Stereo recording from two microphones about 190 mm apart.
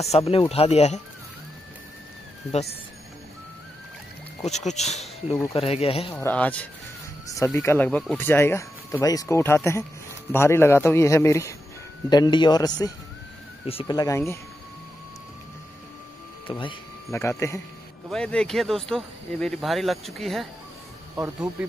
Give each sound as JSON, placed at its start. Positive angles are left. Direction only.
{"t": 0.0, "sound": "speech", "side_deg": 30}
{"t": 4.5, "sound": "speech", "side_deg": 35}
{"t": 6.1, "sound": "a man's voice", "side_deg": 5}
{"t": 16.4, "sound": "speech", "side_deg": 25}
{"t": 17.1, "sound": "speech", "side_deg": 15}